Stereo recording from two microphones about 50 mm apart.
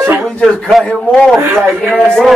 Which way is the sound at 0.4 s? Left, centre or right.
Centre.